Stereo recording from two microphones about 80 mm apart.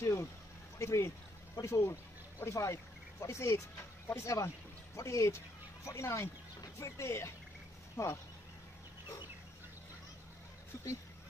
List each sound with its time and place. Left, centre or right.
0.0 s speech: left